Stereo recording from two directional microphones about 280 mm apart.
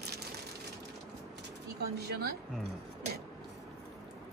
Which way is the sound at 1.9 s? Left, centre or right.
Right.